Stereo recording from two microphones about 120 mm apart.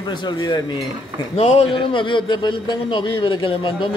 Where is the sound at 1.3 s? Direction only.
55° left (ahead or behind).